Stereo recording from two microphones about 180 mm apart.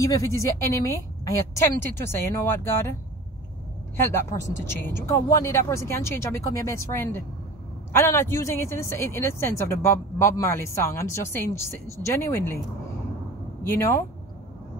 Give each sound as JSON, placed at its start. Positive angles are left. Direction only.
{"t": 0.0, "sound": "speech", "side_deg": 15}
{"t": 3.9, "sound": "speech", "side_deg": 10}
{"t": 13.7, "sound": "speech", "side_deg": 15}